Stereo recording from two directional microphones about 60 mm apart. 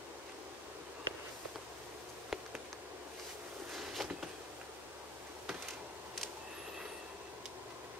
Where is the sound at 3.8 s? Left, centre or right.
Centre.